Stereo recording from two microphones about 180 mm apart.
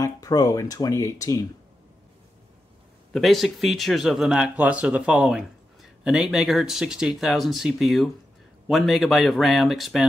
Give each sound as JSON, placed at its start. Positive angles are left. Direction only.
{"t": 0.0, "sound": "speech", "side_deg": 20}
{"t": 3.1, "sound": "speech", "side_deg": 0}